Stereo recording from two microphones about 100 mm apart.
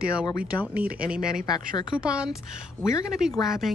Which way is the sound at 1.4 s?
45° left (ahead or behind).